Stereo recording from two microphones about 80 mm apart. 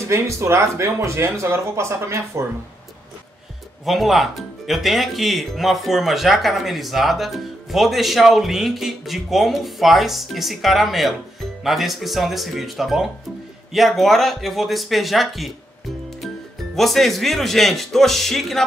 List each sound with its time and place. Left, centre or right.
0.0 s speech: right
3.8 s speech: centre
16.7 s speech: centre